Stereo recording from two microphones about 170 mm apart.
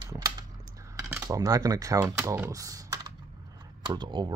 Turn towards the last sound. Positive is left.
turn(degrees=-25)  # may be behind; listen again after turning